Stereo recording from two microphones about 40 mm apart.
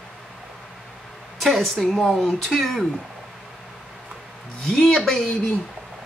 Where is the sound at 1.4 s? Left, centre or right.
Centre.